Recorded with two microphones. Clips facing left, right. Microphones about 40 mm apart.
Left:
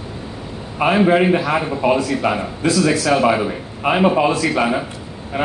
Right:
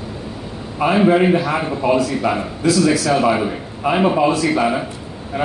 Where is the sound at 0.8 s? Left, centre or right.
Left.